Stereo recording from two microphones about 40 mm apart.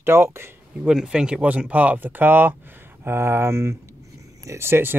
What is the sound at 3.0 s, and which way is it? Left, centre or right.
Speech, right.